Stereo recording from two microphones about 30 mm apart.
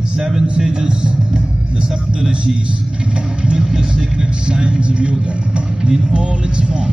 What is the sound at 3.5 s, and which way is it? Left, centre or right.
Vehicle, centre.